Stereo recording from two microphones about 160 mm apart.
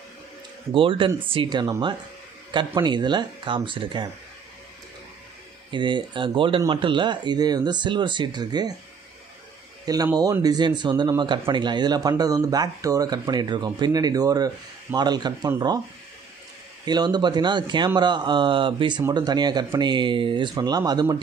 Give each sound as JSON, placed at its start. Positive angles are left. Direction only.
{"t": 0.7, "sound": "speech", "side_deg": -30}
{"t": 5.7, "sound": "speech", "side_deg": -30}
{"t": 10.1, "sound": "speech", "side_deg": -25}
{"t": 16.8, "sound": "speech", "side_deg": -25}